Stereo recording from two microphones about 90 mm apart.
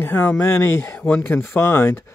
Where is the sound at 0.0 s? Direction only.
25° left (ahead or behind).